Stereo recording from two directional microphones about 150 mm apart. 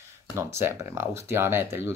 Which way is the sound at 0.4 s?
15° right (ahead or behind).